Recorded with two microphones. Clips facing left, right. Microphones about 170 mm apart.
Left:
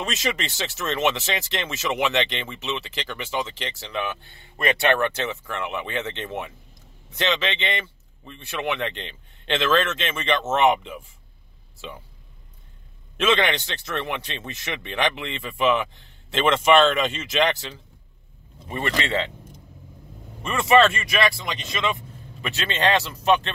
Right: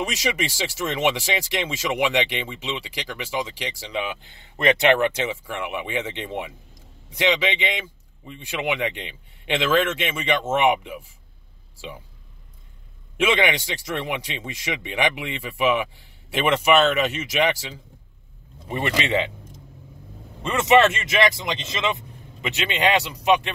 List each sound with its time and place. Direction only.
0.8 s speech: 10° right (ahead or behind)
13.2 s speech: 15° right (ahead or behind)
18.7 s speech: 20° right (ahead or behind)
20.4 s speech: 20° right (ahead or behind)